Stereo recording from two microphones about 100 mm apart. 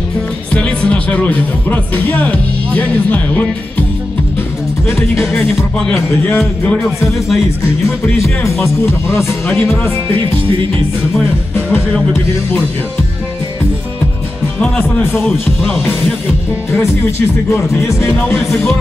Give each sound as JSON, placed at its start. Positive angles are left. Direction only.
{"t": 0.6, "sound": "speech", "side_deg": 10}
{"t": 4.8, "sound": "music", "side_deg": 25}
{"t": 9.1, "sound": "music", "side_deg": 20}
{"t": 15.1, "sound": "speech", "side_deg": 0}